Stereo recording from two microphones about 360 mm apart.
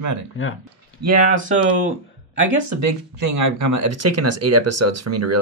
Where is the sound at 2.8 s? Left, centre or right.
Right.